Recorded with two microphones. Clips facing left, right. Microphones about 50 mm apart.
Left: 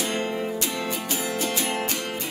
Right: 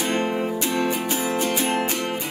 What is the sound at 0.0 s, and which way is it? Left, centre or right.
Music, right.